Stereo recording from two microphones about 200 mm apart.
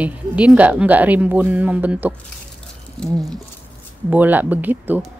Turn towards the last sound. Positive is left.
turn(degrees=-10)  # may be behind; listen again after turning